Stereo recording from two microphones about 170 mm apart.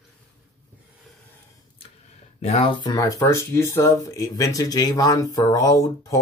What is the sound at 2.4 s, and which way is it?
Speech, 35° left (ahead or behind).